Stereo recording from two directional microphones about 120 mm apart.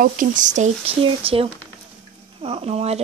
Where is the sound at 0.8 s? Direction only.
50° right (ahead or behind).